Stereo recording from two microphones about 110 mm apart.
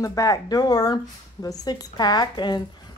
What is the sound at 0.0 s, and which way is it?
Speech, 30° left (ahead or behind).